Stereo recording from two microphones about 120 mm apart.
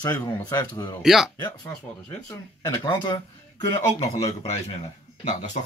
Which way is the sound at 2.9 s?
40° left (ahead or behind).